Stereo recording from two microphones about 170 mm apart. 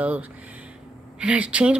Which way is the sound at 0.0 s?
10° right (ahead or behind).